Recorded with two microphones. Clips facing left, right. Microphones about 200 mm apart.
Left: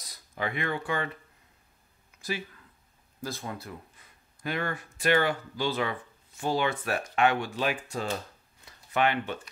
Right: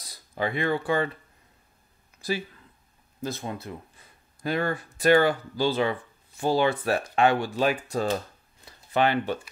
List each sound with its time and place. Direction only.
0.0 s speech: 30° right (ahead or behind)
3.2 s speech: 20° right (ahead or behind)
4.4 s speech: 35° right (ahead or behind)
8.6 s a sound: 35° right (ahead or behind)